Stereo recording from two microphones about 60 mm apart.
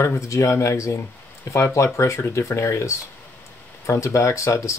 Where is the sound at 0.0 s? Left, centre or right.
Left.